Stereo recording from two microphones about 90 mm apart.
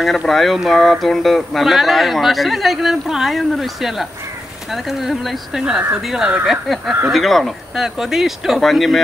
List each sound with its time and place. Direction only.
0.0 s speech: centre (ahead or behind)